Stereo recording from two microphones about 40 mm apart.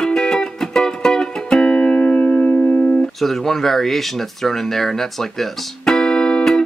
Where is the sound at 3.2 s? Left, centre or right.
Centre.